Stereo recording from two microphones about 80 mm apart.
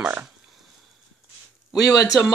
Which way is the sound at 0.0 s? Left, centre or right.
Centre.